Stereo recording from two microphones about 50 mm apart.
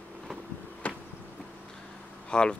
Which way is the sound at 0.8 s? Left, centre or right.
Left.